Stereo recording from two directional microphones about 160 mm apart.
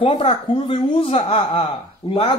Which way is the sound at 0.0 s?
35° left (ahead or behind).